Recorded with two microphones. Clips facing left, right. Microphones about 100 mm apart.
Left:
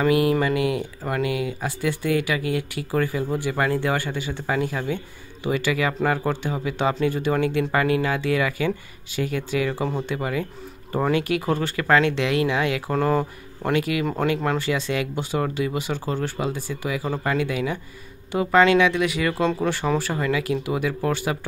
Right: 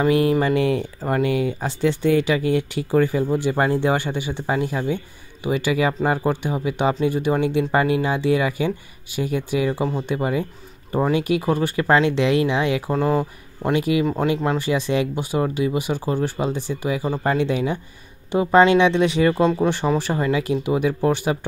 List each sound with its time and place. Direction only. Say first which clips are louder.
0.0 s speech: right 2 dB; 30° right (ahead or behind)
12.9 s speech: right 1 dB; 5° right (ahead or behind)
13.7 s speech: right 4 dB; 20° right (ahead or behind)
17.2 s speech: right 4 dB; 30° right (ahead or behind)